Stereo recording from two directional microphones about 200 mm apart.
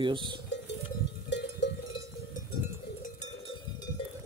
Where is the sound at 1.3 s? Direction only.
60° left (ahead or behind).